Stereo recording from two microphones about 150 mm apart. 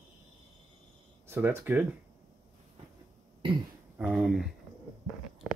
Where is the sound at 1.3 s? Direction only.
15° right (ahead or behind).